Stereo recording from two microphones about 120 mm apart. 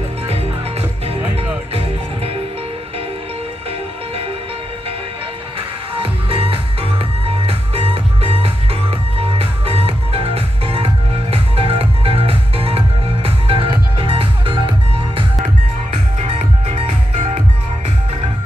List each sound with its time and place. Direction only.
5.9 s music: 50° right (ahead or behind)
15.4 s music: 65° right (ahead or behind)